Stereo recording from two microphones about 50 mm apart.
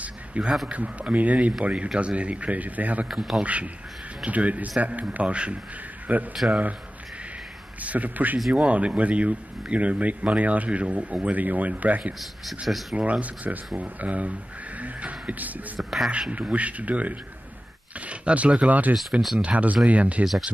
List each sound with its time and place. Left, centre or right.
0.0 s a sound: right
0.7 s speech: right
3.1 s a man's voice: centre
3.4 s speech: right
7.8 s speech: right